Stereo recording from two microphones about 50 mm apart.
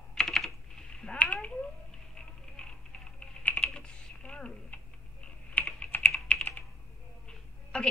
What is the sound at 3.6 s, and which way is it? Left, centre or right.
Typing, centre.